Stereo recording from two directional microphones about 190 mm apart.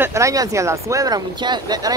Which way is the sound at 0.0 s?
15° right (ahead or behind).